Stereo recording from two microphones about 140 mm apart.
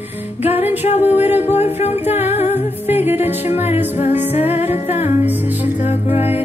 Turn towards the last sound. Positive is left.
turn(degrees=50)  # may be behind; listen again after turning